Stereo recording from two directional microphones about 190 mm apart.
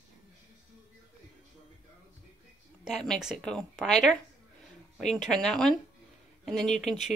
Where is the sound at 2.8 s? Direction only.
Centre (ahead or behind).